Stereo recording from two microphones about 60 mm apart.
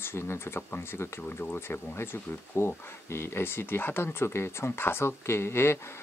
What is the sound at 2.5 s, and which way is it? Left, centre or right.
Speech, left.